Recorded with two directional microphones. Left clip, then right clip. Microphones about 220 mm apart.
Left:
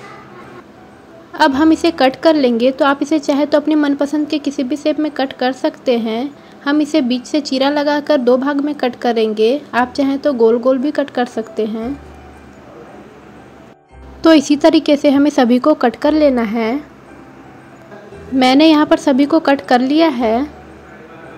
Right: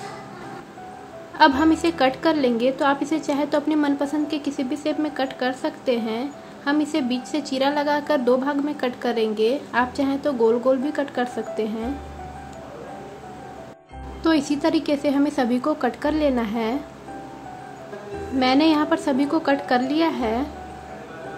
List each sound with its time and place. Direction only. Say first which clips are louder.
1.3 s a woman's voice: left 5 dB; 25° left (ahead or behind)
14.2 s speech: left 11 dB; 30° left (ahead or behind)
18.4 s a woman's voice: left 9 dB; 30° left (ahead or behind)